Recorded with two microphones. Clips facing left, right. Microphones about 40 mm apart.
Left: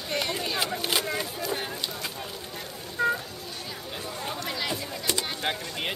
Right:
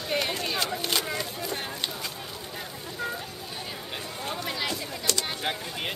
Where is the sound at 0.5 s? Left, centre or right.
Centre.